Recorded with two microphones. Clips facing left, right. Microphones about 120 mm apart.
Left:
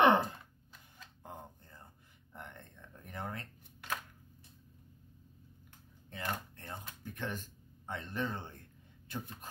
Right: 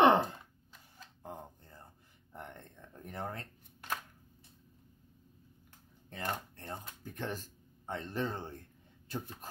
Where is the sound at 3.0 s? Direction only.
35° right (ahead or behind).